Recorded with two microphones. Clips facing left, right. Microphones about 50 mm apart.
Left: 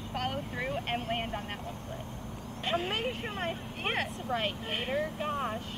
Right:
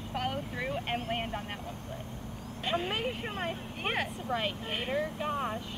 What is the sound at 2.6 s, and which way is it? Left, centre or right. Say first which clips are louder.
Speech: even; centre.